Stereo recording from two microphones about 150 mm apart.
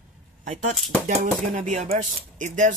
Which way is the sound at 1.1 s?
60° right (ahead or behind).